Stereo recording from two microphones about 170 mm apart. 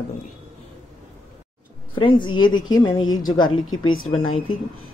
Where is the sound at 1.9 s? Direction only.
30° left (ahead or behind).